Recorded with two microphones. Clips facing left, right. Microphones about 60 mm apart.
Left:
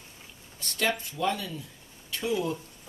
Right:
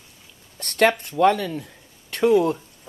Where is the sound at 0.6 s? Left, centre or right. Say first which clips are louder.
Right 10 dB; right.